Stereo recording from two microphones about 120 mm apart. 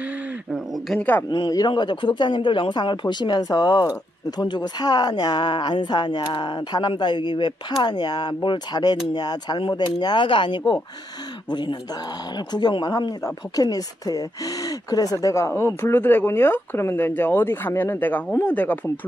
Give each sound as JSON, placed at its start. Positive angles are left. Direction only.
{"t": 0.9, "sound": "speech", "side_deg": 15}
{"t": 1.3, "sound": "speech", "side_deg": 35}
{"t": 12.5, "sound": "speech", "side_deg": 35}